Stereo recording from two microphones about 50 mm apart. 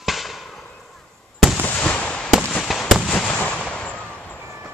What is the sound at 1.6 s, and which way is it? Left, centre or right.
Fireworks, left.